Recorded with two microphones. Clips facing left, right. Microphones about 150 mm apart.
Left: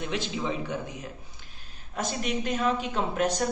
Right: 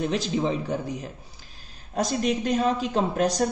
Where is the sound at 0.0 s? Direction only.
40° right (ahead or behind).